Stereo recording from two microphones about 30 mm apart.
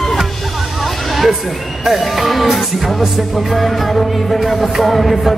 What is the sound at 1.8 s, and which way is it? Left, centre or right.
Music, centre.